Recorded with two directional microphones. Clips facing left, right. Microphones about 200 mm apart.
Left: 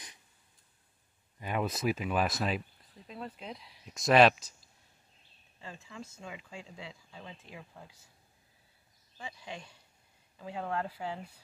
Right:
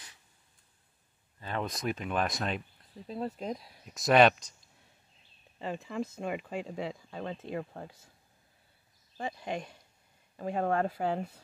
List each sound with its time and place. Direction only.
1.4 s speech: 10° left (ahead or behind)
3.1 s speech: 40° right (ahead or behind)
3.8 s speech: centre (ahead or behind)
5.6 s speech: 65° right (ahead or behind)
9.1 s speech: 55° right (ahead or behind)